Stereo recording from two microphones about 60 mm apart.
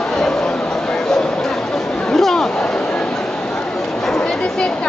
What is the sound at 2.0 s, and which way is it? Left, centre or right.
Chatter, centre.